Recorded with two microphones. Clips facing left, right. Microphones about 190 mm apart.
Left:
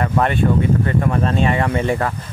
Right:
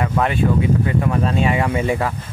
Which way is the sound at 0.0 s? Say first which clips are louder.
Left 1 dB; 5° right (ahead or behind).